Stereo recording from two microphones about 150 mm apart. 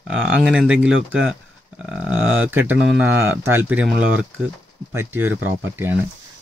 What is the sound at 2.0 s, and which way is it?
Speech, 10° right (ahead or behind).